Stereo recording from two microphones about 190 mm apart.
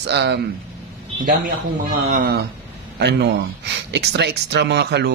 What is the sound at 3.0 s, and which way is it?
Speech, 65° right (ahead or behind).